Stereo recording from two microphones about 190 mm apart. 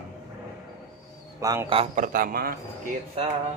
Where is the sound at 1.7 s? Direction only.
40° right (ahead or behind).